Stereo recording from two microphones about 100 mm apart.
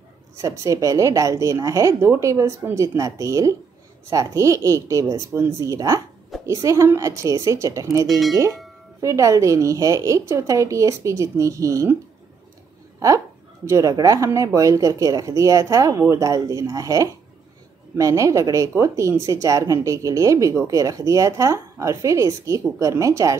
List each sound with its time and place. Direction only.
0.4 s speech: 30° right (ahead or behind)
13.7 s speech: 35° right (ahead or behind)